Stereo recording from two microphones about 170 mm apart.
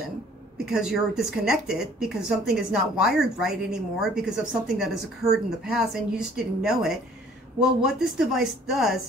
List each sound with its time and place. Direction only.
0.7 s a woman's voice: 5° right (ahead or behind)
5.2 s speech: 20° right (ahead or behind)
5.6 s a woman's voice: 5° right (ahead or behind)